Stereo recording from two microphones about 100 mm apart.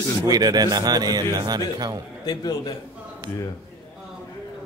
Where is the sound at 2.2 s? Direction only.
45° left (ahead or behind).